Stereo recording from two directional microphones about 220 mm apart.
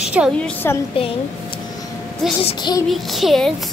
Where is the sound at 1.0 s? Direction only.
25° left (ahead or behind).